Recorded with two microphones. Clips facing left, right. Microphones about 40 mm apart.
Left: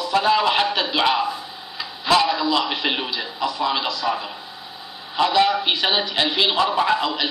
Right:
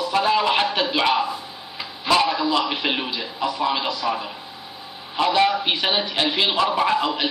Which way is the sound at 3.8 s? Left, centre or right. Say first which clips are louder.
Even; right.